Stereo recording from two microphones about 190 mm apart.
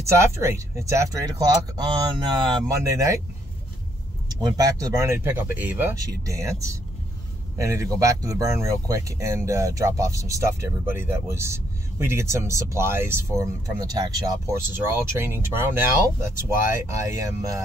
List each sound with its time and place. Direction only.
0.2 s speech: 15° right (ahead or behind)
4.3 s speech: 20° right (ahead or behind)